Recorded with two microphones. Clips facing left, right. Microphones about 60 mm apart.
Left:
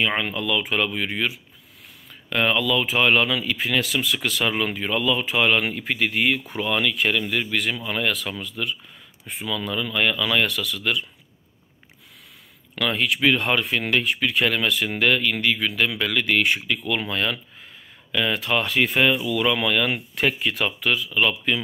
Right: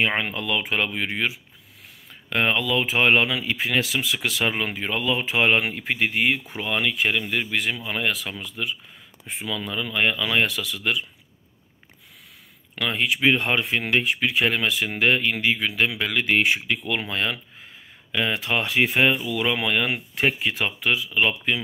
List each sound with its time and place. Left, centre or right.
0.2 s speech: right
12.8 s speech: centre